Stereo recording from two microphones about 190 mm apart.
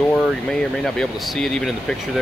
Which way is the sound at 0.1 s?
5° left (ahead or behind).